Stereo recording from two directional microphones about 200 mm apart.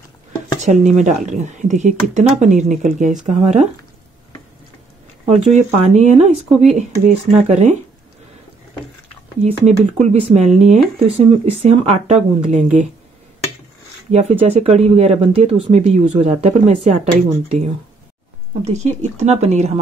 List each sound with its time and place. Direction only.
0.6 s speech: 35° right (ahead or behind)
5.2 s speech: 35° right (ahead or behind)
9.4 s speech: 35° right (ahead or behind)
14.1 s speech: 35° right (ahead or behind)